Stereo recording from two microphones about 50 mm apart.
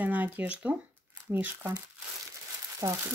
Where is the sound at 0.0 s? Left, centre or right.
Right.